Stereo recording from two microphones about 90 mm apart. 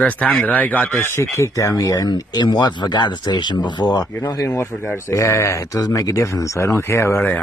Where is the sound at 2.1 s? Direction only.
50° left (ahead or behind).